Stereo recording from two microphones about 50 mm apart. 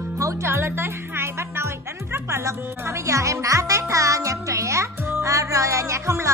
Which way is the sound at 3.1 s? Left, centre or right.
Right.